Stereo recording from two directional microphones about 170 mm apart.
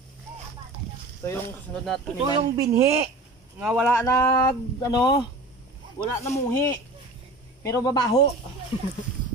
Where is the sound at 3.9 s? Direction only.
20° left (ahead or behind).